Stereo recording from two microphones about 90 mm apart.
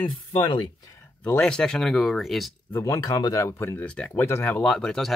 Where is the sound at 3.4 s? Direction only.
30° left (ahead or behind).